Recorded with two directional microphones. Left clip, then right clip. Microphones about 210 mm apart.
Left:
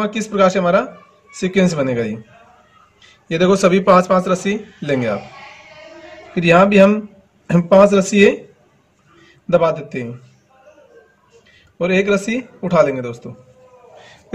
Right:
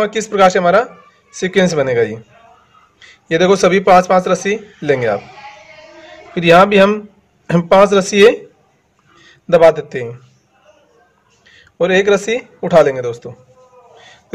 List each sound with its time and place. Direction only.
0.0 s speech: 35° right (ahead or behind)
6.3 s speech: 30° right (ahead or behind)
9.5 s speech: 35° right (ahead or behind)
11.8 s speech: 35° right (ahead or behind)